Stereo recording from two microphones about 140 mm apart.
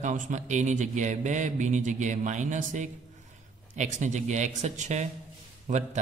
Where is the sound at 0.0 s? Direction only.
65° right (ahead or behind).